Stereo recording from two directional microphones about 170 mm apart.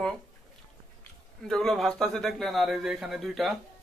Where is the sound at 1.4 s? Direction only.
Centre (ahead or behind).